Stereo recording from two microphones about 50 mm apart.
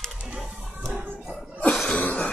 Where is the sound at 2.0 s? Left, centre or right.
Left.